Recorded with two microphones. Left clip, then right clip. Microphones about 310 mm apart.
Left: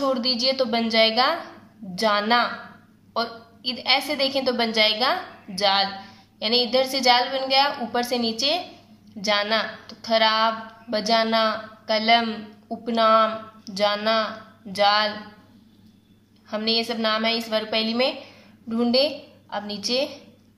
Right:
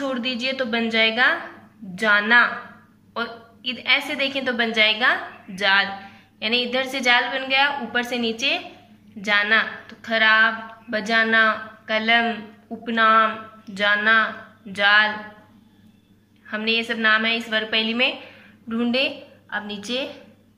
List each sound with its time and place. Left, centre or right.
0.0 s a woman's voice: centre
16.4 s a woman's voice: centre